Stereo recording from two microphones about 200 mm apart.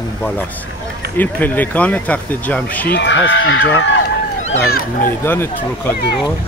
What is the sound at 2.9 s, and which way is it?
Speech, 65° left (ahead or behind).